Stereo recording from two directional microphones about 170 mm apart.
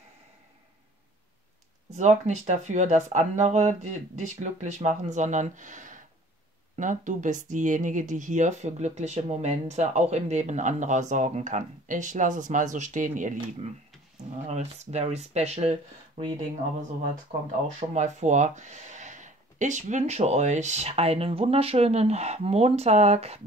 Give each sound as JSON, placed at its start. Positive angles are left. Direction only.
{"t": 2.0, "sound": "speech", "side_deg": -45}
{"t": 17.7, "sound": "speech", "side_deg": -45}